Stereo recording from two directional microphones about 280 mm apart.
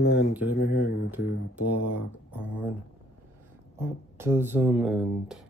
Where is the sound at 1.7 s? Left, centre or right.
Left.